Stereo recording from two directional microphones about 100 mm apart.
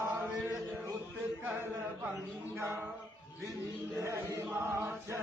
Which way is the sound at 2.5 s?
25° right (ahead or behind).